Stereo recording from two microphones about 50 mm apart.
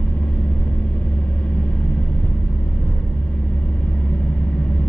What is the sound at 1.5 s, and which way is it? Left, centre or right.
Vehicle, left.